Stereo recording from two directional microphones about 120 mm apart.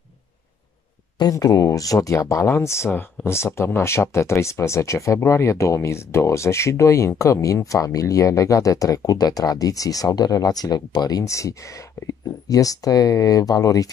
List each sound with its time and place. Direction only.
1.1 s speech: 30° left (ahead or behind)